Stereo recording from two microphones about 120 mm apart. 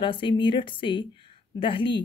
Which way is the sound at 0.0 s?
45° left (ahead or behind).